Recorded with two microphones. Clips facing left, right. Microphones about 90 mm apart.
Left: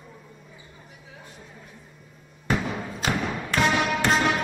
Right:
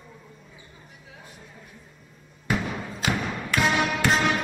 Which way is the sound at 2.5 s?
Centre (ahead or behind).